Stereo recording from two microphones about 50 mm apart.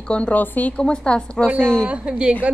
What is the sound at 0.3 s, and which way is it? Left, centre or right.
Speech, left.